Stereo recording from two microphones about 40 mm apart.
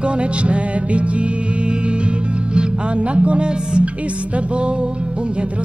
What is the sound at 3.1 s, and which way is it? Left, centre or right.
Music, right.